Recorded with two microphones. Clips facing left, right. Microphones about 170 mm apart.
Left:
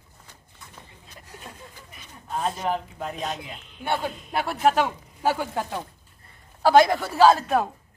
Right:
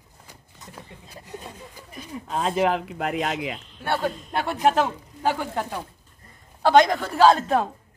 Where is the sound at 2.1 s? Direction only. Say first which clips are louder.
Right 3 dB; 90° right.